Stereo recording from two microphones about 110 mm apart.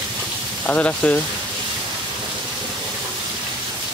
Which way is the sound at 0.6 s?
10° left (ahead or behind).